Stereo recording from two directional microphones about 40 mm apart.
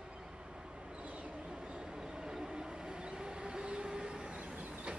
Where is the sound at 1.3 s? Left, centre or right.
Right.